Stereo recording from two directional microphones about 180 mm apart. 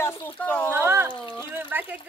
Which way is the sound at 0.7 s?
15° right (ahead or behind).